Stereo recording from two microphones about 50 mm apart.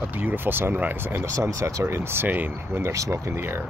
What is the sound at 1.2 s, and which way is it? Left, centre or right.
Speech, right.